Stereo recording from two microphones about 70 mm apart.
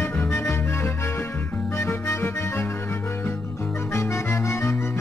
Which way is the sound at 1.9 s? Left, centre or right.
Left.